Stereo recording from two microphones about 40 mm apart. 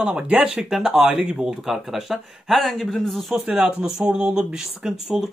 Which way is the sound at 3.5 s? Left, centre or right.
Right.